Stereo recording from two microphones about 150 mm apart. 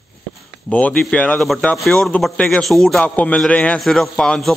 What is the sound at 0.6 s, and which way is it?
A man's voice, 10° left (ahead or behind).